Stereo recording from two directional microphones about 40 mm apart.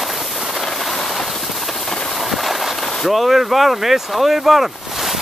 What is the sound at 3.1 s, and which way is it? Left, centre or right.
Speech, centre.